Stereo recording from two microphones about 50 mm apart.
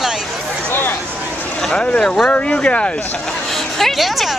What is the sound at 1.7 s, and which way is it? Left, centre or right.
Speech, centre.